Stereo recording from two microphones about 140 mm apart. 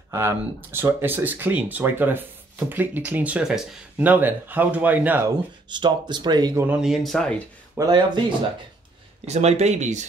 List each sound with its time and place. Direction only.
0.1 s speech: 15° right (ahead or behind)
5.7 s speech: 35° right (ahead or behind)
6.6 s speech: 5° right (ahead or behind)
7.7 s speech: 30° right (ahead or behind)
9.2 s speech: 50° right (ahead or behind)